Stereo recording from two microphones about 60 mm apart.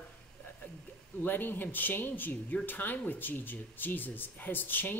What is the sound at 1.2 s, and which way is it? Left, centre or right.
A woman's voice, left.